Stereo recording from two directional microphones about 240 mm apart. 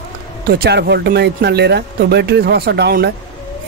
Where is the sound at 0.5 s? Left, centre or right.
Right.